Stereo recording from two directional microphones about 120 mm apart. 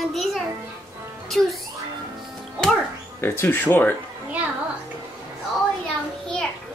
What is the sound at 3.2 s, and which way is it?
Speech, 20° left (ahead or behind).